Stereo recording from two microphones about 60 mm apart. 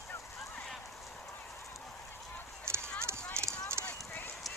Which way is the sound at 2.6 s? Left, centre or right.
Right.